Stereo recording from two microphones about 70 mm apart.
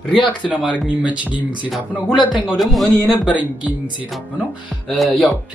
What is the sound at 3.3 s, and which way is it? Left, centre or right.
Speech, centre.